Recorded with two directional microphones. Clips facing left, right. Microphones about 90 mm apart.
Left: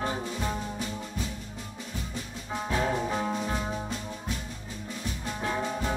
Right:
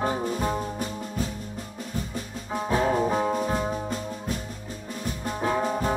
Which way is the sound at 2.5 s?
40° right (ahead or behind).